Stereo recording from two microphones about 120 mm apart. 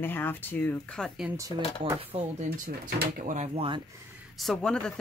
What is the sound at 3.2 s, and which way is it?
Speech, 90° right.